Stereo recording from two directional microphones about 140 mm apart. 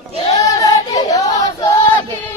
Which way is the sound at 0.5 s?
25° left (ahead or behind).